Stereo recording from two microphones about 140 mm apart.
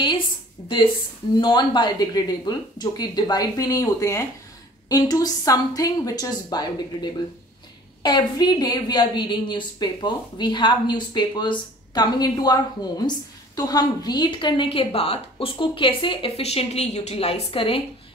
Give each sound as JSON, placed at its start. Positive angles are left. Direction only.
{"t": 0.6, "sound": "speech", "side_deg": 10}
{"t": 1.4, "sound": "a woman's voice", "side_deg": 30}